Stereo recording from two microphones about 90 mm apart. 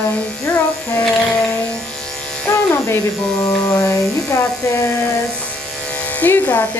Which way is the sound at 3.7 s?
35° left (ahead or behind).